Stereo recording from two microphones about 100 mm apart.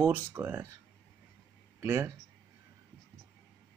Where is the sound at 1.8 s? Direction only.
30° right (ahead or behind).